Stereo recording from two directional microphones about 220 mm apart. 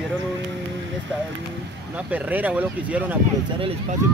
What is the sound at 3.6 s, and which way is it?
Speech, 25° right (ahead or behind).